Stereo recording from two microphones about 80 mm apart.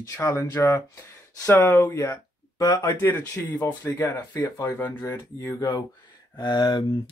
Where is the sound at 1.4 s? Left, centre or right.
Left.